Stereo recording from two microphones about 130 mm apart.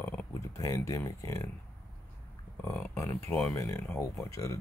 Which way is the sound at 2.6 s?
20° left (ahead or behind).